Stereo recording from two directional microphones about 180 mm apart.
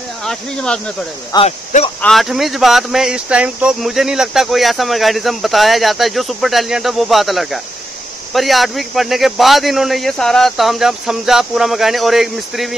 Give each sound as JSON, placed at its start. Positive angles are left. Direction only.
{"t": 0.2, "sound": "speech", "side_deg": 5}
{"t": 1.3, "sound": "speech", "side_deg": 20}
{"t": 2.0, "sound": "speech", "side_deg": 0}